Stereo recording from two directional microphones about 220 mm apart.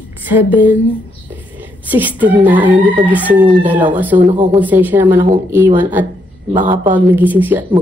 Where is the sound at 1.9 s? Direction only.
10° right (ahead or behind).